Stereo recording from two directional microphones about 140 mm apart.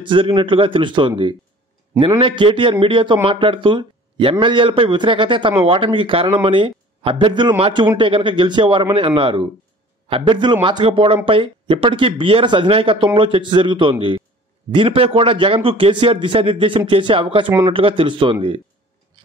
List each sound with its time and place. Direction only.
0.0 s speech: 35° right (ahead or behind)